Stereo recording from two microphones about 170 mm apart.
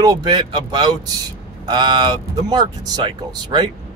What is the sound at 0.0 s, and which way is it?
Speech, 25° right (ahead or behind).